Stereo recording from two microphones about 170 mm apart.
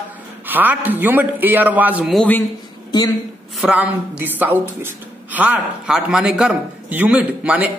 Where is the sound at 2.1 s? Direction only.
10° left (ahead or behind).